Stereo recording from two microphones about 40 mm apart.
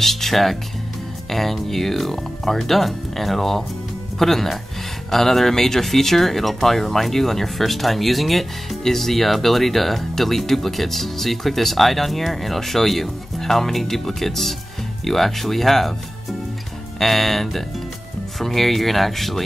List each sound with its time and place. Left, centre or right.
0.0 s speech: centre